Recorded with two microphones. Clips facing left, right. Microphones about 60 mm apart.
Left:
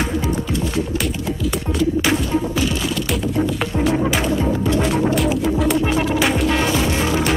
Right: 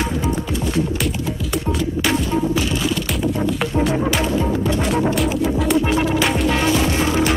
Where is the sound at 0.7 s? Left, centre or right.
Centre.